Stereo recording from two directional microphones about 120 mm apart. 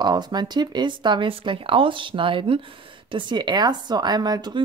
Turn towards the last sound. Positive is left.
turn(degrees=-35)  # may be behind; listen again after turning